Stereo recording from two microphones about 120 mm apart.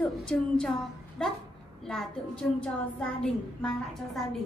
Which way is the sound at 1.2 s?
5° left (ahead or behind).